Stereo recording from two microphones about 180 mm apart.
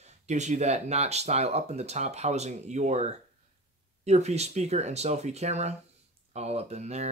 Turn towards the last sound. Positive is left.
turn(degrees=-40)  # may be behind; listen again after turning